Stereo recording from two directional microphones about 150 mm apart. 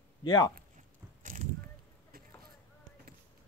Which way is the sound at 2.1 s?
90° right.